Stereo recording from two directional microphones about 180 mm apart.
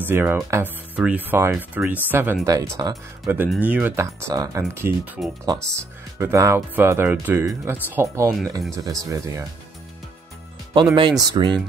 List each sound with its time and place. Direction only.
0.0 s speech: 10° right (ahead or behind)
10.7 s speech: 25° right (ahead or behind)